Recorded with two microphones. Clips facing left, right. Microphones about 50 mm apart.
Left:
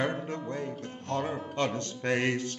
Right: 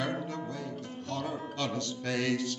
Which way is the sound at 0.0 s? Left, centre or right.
Left.